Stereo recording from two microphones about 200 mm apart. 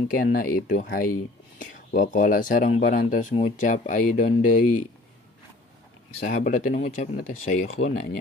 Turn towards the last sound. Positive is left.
turn(degrees=35)  # may be behind; listen again after turning